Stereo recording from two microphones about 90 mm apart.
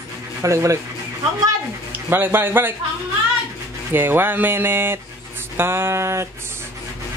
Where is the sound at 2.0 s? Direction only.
25° right (ahead or behind).